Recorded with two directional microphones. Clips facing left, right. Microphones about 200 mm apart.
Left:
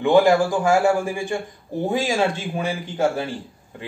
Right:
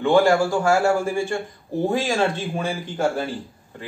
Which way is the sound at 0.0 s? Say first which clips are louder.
Left 1 dB; 15° left (ahead or behind).